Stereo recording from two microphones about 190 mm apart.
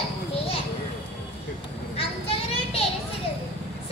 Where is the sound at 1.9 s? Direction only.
30° left (ahead or behind).